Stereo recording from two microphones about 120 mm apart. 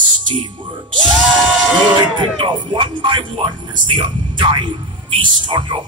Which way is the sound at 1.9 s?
40° right (ahead or behind).